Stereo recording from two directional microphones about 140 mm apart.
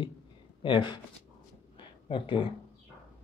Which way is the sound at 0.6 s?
35° left (ahead or behind).